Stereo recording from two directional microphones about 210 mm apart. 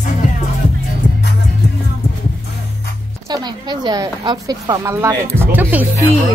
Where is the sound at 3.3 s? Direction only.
20° right (ahead or behind).